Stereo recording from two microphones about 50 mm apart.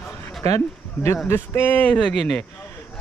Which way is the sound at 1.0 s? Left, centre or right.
Left.